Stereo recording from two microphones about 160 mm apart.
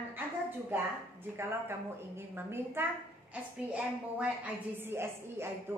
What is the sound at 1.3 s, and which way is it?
A woman's voice, 15° right (ahead or behind).